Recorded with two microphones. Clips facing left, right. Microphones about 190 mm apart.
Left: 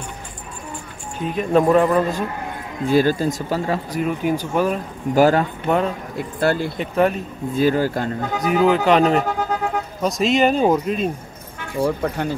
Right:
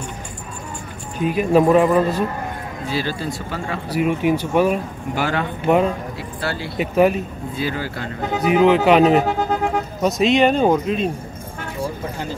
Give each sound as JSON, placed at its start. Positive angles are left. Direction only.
{"t": 1.2, "sound": "speech", "side_deg": -10}
{"t": 2.9, "sound": "speech", "side_deg": 45}
{"t": 4.0, "sound": "speech", "side_deg": -5}
{"t": 5.1, "sound": "speech", "side_deg": 40}
{"t": 5.6, "sound": "speech", "side_deg": -5}
{"t": 6.1, "sound": "speech", "side_deg": 50}
{"t": 6.8, "sound": "speech", "side_deg": -5}
{"t": 7.5, "sound": "speech", "side_deg": 45}
{"t": 8.5, "sound": "speech", "side_deg": 0}
{"t": 11.8, "sound": "speech", "side_deg": 65}